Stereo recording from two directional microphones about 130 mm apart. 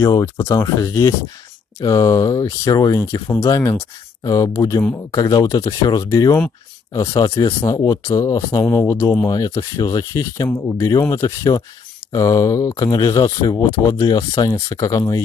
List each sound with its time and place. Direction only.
0.0 s speech: 25° left (ahead or behind)